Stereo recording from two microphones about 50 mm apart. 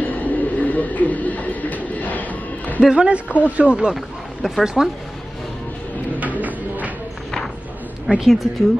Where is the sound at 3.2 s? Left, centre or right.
Left.